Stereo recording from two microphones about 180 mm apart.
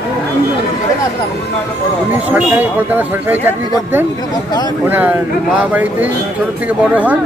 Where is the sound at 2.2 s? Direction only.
10° right (ahead or behind).